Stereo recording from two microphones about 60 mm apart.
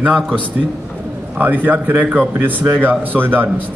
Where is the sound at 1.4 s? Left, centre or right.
Right.